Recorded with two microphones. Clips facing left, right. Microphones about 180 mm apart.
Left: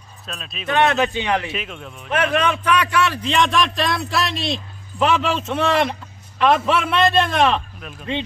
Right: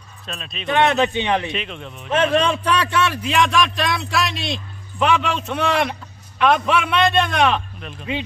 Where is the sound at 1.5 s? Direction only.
5° left (ahead or behind).